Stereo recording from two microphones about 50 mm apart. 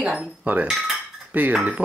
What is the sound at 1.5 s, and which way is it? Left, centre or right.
Speech, right.